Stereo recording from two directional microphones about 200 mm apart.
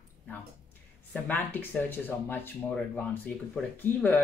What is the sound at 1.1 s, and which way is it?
Speech, 10° left (ahead or behind).